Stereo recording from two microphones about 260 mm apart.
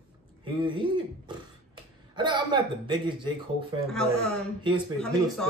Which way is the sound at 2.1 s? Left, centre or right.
Centre.